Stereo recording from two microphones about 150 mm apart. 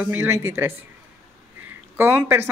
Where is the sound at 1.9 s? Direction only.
15° right (ahead or behind).